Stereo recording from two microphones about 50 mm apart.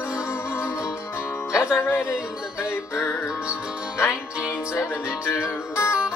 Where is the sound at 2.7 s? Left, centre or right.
Left.